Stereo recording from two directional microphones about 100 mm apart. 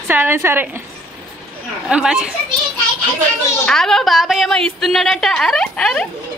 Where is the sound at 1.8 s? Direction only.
10° right (ahead or behind).